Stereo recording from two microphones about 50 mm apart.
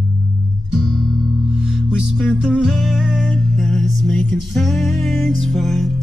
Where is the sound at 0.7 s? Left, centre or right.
Centre.